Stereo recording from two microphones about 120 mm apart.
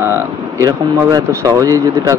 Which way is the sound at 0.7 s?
30° right (ahead or behind).